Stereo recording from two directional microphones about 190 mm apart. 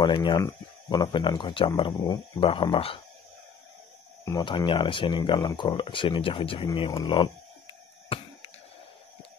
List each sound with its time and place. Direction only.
0.0 s speech: 25° left (ahead or behind)
4.2 s speech: 20° left (ahead or behind)